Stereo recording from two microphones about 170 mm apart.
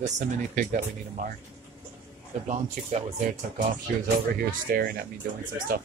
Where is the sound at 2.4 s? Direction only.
45° right (ahead or behind).